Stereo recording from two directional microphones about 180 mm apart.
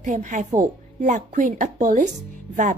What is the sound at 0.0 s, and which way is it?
A woman's voice, 45° right (ahead or behind).